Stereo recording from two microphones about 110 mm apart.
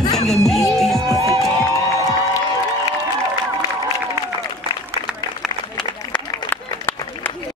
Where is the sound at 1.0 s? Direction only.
30° right (ahead or behind).